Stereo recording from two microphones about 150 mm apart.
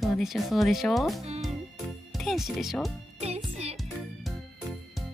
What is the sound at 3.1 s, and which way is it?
Music, 45° right (ahead or behind).